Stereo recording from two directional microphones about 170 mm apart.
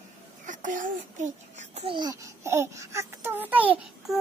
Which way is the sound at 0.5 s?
50° right (ahead or behind).